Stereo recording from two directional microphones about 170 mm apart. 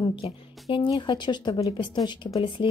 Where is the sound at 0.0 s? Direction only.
30° left (ahead or behind).